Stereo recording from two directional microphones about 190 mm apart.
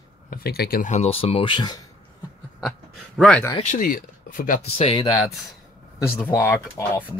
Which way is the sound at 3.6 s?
40° left (ahead or behind).